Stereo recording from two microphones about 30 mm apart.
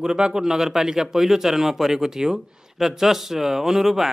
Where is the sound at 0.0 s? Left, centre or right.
Right.